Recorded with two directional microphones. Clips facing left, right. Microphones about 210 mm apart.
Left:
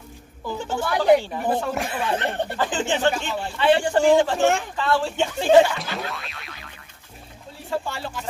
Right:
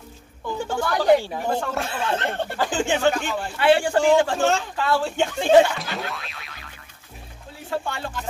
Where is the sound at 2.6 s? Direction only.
10° right (ahead or behind).